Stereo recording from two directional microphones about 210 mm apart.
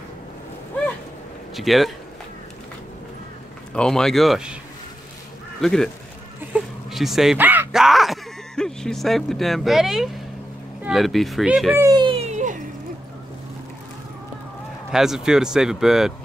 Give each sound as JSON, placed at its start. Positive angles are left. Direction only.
{"t": 1.5, "sound": "speech", "side_deg": 0}
{"t": 3.7, "sound": "speech", "side_deg": 5}
{"t": 5.6, "sound": "speech", "side_deg": 0}
{"t": 6.9, "sound": "speech", "side_deg": 0}
{"t": 11.8, "sound": "a sound", "side_deg": -20}
{"t": 14.9, "sound": "speech", "side_deg": 0}